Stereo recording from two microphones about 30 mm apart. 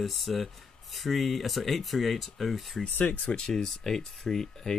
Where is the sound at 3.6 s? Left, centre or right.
Centre.